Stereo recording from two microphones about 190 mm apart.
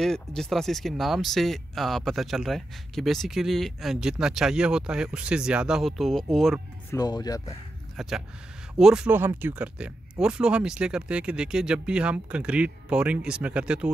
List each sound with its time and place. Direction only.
0.0 s speech: 5° left (ahead or behind)
6.9 s speech: 20° left (ahead or behind)
8.0 s speech: centre (ahead or behind)